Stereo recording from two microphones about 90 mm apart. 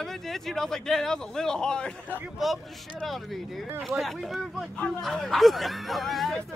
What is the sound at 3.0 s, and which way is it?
Speech, centre (ahead or behind).